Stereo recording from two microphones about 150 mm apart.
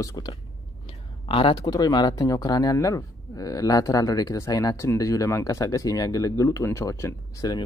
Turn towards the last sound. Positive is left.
turn(degrees=20)  # may be behind; listen again after turning